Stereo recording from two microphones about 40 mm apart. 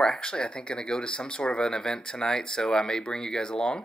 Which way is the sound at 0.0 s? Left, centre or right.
Left.